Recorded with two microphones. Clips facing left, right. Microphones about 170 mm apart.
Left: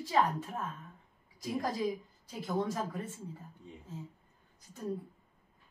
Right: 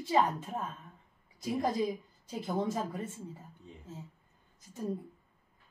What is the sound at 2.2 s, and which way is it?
Speech, 20° right (ahead or behind).